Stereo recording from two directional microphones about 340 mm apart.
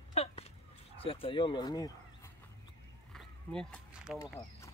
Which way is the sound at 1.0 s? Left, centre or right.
Centre.